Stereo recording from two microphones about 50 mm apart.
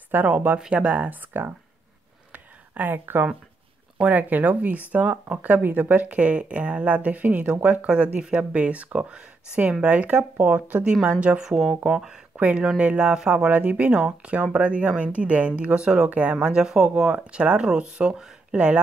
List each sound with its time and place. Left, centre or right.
0.1 s speech: right
0.6 s speech: right
1.3 s speech: right
2.3 s a sound: right
4.1 s speech: right
8.2 s speech: centre; by 10.8 s right
10.8 s speech: centre
11.1 s speech: right
11.3 s speech: centre
12.4 s speech: right
16.1 s speech: right
16.4 s speech: centre